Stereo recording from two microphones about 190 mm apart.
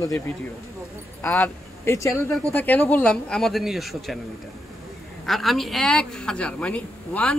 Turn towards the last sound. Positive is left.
turn(degrees=5)  # may be behind; listen again after turning